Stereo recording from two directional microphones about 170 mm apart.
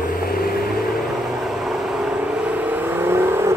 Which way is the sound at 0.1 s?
60° left (ahead or behind).